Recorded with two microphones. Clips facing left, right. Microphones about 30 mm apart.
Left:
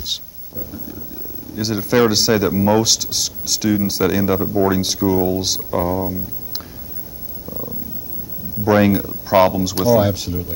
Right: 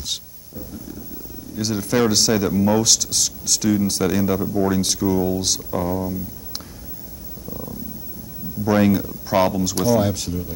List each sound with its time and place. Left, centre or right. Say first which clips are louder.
0.1 s thunder: left 4 dB; centre
1.5 s a man's voice: left 4 dB; centre
7.4 s purr: left 2 dB; centre
8.6 s a man's voice: left 3 dB; centre